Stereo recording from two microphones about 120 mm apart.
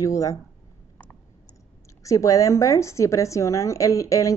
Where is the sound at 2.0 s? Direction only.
25° left (ahead or behind).